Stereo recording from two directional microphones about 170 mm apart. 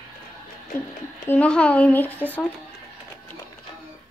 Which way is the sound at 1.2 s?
10° left (ahead or behind).